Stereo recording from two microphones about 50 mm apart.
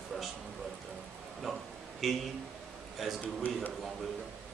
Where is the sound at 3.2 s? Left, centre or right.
Left.